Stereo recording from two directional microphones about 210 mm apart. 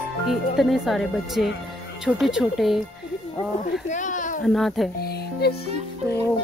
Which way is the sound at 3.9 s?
35° left (ahead or behind).